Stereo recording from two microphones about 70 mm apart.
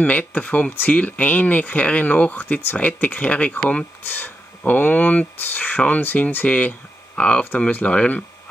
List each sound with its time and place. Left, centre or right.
0.0 s speech: left
4.1 s speech: left